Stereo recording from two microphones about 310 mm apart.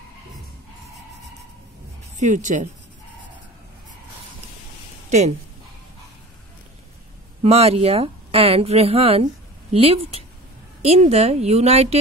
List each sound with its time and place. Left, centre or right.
2.1 s a woman's voice: right
7.4 s a woman's voice: centre